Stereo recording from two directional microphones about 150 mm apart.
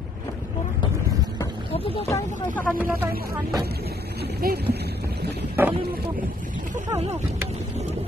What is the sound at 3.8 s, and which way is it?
Boat, 90° right.